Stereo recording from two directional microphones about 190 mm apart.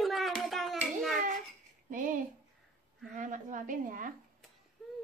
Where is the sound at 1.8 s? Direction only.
45° right (ahead or behind).